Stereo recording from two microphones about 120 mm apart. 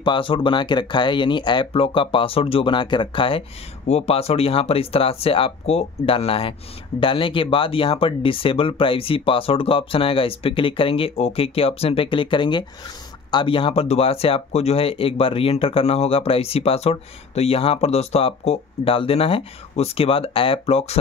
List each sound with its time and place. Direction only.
0.0 s speech: 45° left (ahead or behind)
3.8 s speech: 60° left (ahead or behind)